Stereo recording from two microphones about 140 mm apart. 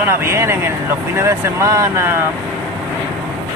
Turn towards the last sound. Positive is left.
turn(degrees=-20)  # may be behind; listen again after turning